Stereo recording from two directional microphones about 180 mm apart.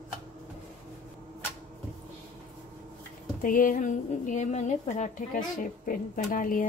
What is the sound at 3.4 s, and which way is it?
A woman's voice, 50° left (ahead or behind).